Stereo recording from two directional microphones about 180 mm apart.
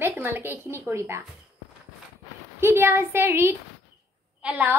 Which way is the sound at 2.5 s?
15° right (ahead or behind).